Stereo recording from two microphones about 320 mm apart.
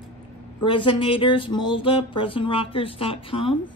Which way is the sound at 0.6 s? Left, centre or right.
Centre.